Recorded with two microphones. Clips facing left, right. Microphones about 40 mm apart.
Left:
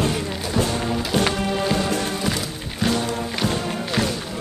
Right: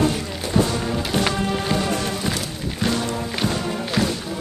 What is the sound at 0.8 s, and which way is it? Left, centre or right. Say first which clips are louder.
Music: left 1 dB; centre.